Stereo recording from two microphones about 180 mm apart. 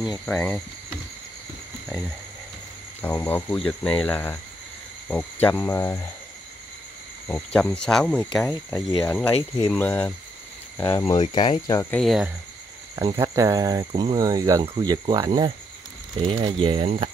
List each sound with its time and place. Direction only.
0.0 s speech: centre (ahead or behind)
3.0 s speech: 10° left (ahead or behind)
7.2 s speech: 10° left (ahead or behind)
12.0 s speech: centre (ahead or behind)
12.9 s speech: 25° right (ahead or behind)